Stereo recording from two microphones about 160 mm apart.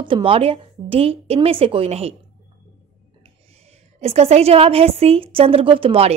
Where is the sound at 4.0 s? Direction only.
40° right (ahead or behind).